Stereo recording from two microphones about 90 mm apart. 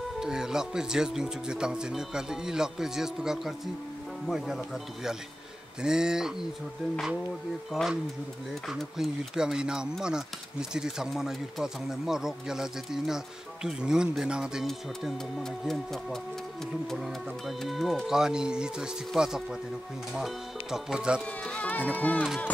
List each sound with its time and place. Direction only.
0.2 s speech: 5° right (ahead or behind)
7.7 s speech: centre (ahead or behind)
21.5 s speech: 15° left (ahead or behind)